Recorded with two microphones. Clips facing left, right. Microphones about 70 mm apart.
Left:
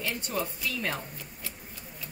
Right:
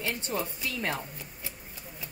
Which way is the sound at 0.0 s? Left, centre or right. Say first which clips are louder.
Even; right.